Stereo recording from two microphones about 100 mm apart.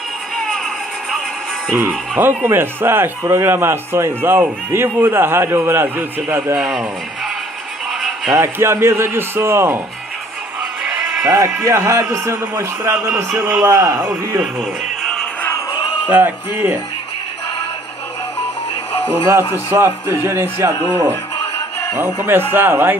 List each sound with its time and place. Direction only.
1.7 s speech: 20° right (ahead or behind)
8.3 s speech: 25° right (ahead or behind)
10.8 s bleat: 15° right (ahead or behind)
11.2 s a man's voice: 30° right (ahead or behind)
12.9 s speech: 15° right (ahead or behind)
13.2 s a man's voice: 25° right (ahead or behind)
14.4 s speech: 10° right (ahead or behind)
16.1 s speech: 20° right (ahead or behind)
19.5 s speech: 25° right (ahead or behind)
21.9 s speech: 25° right (ahead or behind)